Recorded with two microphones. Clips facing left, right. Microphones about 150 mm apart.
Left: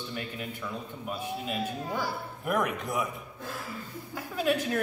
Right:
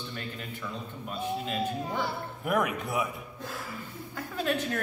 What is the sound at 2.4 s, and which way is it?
Speech, 5° right (ahead or behind).